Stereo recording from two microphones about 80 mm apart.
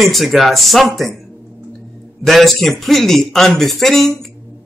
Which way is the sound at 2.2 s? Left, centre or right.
Centre.